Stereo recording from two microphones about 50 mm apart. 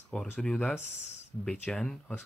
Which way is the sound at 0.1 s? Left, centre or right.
Centre.